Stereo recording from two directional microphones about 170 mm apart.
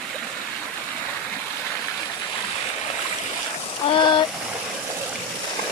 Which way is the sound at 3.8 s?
30° left (ahead or behind).